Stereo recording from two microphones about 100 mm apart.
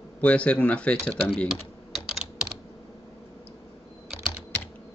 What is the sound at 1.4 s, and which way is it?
Typing, 5° right (ahead or behind).